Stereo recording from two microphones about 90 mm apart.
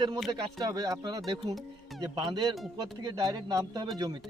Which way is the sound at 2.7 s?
50° right (ahead or behind).